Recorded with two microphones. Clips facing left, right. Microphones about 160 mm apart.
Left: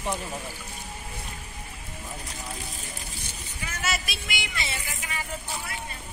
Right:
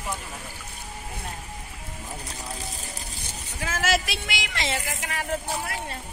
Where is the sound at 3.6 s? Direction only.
90° right.